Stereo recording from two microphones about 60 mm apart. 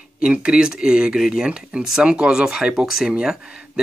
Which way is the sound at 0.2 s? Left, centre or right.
Centre.